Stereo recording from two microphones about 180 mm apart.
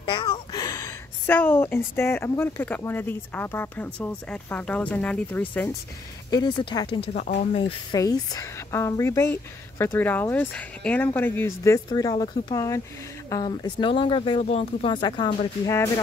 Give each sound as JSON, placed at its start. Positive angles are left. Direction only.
{"t": 0.0, "sound": "a woman's voice", "side_deg": 25}
{"t": 6.3, "sound": "a woman's voice", "side_deg": 25}